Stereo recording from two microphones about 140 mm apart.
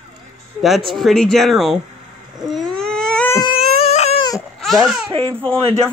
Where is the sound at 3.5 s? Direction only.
45° left (ahead or behind).